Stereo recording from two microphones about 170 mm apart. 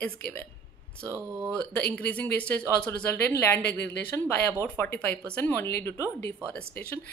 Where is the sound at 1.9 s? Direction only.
10° left (ahead or behind).